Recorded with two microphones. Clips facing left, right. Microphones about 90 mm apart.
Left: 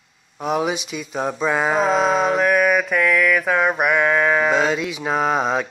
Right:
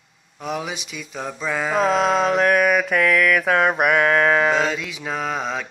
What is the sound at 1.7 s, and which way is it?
Mantra, 5° left (ahead or behind).